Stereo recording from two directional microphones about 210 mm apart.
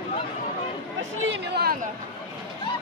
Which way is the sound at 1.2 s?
50° right (ahead or behind).